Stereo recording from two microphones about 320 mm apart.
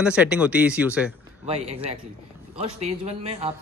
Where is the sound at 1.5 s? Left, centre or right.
Centre.